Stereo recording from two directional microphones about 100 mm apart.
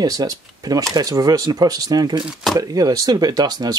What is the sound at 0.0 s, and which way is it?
Speech, 40° right (ahead or behind).